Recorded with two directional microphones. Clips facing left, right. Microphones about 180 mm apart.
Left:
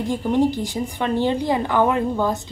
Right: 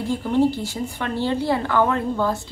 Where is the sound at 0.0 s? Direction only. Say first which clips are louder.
Even; 15° left (ahead or behind).